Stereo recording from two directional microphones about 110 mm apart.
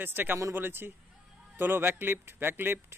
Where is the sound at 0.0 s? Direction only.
20° right (ahead or behind).